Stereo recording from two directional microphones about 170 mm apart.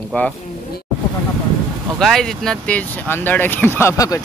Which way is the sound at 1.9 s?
Centre (ahead or behind).